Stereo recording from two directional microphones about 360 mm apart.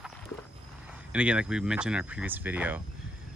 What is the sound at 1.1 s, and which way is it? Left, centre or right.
Speech, centre.